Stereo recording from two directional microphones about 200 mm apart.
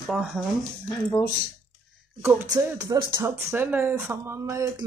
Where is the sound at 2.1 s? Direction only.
10° right (ahead or behind).